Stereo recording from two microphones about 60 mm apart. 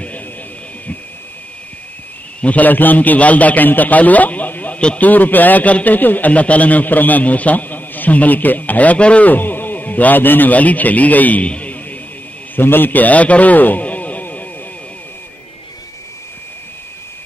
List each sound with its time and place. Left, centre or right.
2.4 s a man's voice: left
12.5 s a man's voice: left